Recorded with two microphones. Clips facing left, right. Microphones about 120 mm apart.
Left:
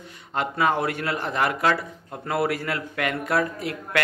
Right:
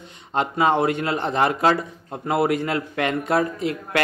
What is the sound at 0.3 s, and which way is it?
Speech, 25° right (ahead or behind).